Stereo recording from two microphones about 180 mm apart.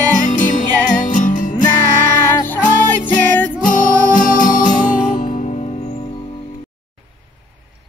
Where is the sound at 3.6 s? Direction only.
45° left (ahead or behind).